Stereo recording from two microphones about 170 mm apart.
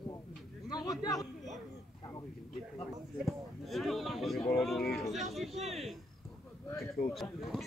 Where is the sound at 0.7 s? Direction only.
25° left (ahead or behind).